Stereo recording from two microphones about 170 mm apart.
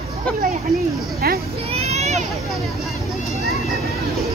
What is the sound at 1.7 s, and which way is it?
Children playing, 40° right (ahead or behind).